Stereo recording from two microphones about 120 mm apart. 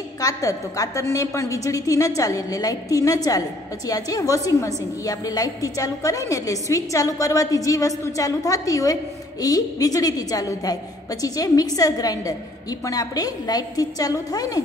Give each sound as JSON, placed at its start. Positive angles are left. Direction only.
{"t": 0.2, "sound": "a woman's voice", "side_deg": 25}